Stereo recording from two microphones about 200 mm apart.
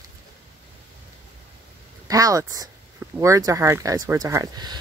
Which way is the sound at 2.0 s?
15° right (ahead or behind).